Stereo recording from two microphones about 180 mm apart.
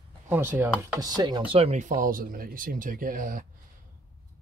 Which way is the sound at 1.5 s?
35° right (ahead or behind).